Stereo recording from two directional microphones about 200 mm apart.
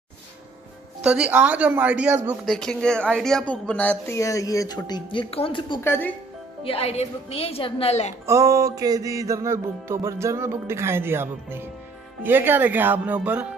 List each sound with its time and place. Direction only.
1.0 s speech: 5° right (ahead or behind); by 5.8 s 25° left (ahead or behind)
5.8 s speech: 10° left (ahead or behind)
6.6 s a woman's voice: 30° left (ahead or behind)
8.3 s music: 15° right (ahead or behind)